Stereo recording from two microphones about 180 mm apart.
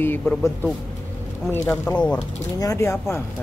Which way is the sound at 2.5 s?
15° left (ahead or behind).